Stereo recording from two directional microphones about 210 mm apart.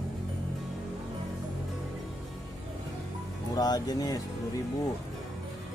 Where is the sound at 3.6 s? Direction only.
20° left (ahead or behind).